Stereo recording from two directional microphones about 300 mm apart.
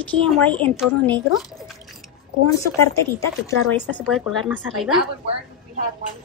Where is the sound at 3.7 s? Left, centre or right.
Centre.